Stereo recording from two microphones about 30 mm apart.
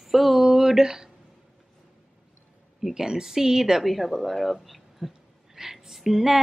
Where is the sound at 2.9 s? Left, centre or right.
Right.